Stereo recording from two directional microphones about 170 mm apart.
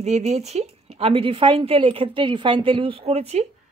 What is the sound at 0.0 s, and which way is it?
A woman's voice, 40° right (ahead or behind).